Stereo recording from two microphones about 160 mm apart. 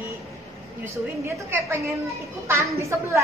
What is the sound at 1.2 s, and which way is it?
A woman's voice, 15° right (ahead or behind).